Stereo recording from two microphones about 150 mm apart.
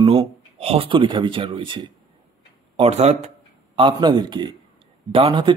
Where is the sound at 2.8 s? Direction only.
45° right (ahead or behind).